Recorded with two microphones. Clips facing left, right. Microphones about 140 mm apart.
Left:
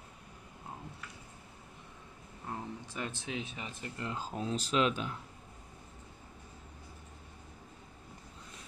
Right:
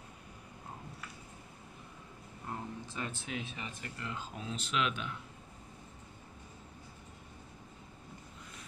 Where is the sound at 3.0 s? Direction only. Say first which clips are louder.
Left 2 dB; 25° left (ahead or behind).